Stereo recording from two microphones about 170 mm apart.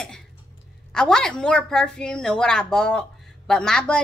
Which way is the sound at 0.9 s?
5° left (ahead or behind).